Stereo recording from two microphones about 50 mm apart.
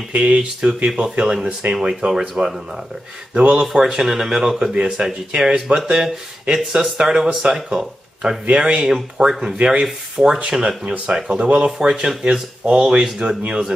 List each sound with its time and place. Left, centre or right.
0.1 s speech: right
3.3 s speech: right
3.6 s speech: centre
8.9 s speech: centre